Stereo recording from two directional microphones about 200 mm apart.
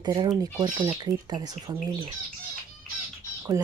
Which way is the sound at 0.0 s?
20° right (ahead or behind).